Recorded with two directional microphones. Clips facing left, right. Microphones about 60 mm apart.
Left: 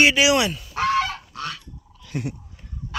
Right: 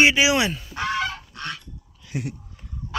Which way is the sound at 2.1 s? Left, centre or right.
Centre.